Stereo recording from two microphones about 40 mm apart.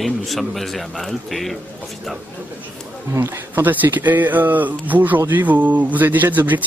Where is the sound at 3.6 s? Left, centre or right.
Right.